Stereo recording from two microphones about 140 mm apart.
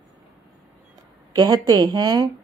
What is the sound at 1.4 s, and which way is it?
Speech, 30° right (ahead or behind).